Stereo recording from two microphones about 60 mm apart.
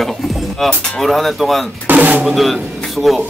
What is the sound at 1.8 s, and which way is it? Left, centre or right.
Drum, right.